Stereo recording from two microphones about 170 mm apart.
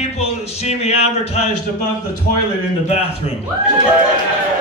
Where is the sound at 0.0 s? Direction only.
40° left (ahead or behind).